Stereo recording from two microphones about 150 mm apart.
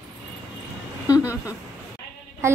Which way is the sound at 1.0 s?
25° left (ahead or behind).